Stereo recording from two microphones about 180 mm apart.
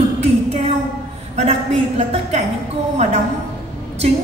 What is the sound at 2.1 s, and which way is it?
Speech, 40° right (ahead or behind).